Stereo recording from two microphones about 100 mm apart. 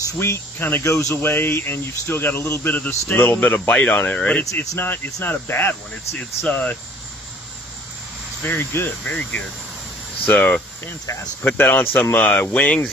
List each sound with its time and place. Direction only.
0.2 s speech: 25° left (ahead or behind)
8.4 s speech: 20° left (ahead or behind)
11.1 s speech: 35° left (ahead or behind)
11.4 s speech: 20° left (ahead or behind)